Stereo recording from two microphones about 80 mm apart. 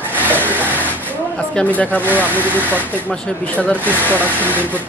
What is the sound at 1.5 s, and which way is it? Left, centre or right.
Speech, centre.